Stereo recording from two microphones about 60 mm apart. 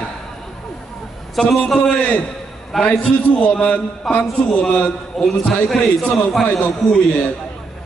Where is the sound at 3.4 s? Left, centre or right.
Left.